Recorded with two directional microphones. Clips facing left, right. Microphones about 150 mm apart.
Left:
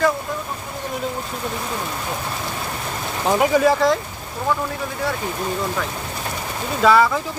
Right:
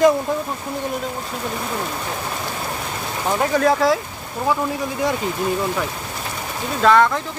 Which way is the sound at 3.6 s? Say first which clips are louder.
Even; centre (ahead or behind).